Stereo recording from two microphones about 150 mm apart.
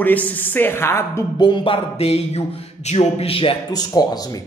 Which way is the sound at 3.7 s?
25° left (ahead or behind).